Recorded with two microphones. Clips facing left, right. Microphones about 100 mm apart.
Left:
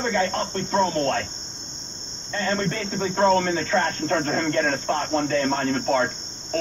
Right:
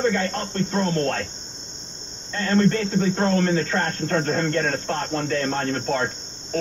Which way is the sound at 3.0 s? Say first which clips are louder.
Left 4 dB; 25° left (ahead or behind).